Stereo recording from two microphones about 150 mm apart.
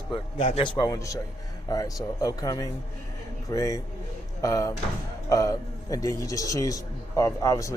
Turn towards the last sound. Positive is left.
turn(degrees=20)  # may be behind; listen again after turning